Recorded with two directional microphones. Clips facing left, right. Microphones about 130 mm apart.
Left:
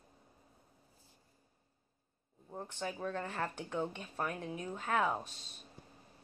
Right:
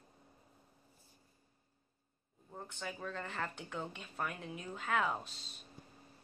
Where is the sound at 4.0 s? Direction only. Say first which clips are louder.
Left 3 dB; 35° left (ahead or behind).